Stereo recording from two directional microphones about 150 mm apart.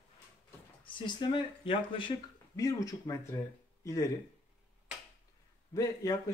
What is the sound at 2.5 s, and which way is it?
Speech, 20° left (ahead or behind).